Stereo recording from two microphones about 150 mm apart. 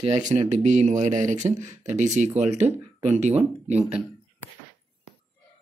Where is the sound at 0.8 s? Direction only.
55° right (ahead or behind).